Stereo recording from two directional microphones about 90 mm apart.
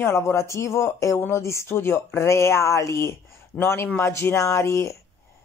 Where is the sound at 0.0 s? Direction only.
30° left (ahead or behind).